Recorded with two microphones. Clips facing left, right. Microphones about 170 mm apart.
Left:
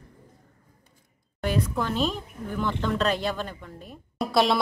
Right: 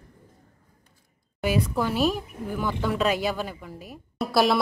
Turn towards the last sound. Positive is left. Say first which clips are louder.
# right 1 dB
turn(degrees=0)  # may be behind; listen again after turning